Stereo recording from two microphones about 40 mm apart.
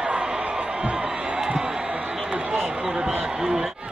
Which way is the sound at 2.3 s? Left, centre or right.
Right.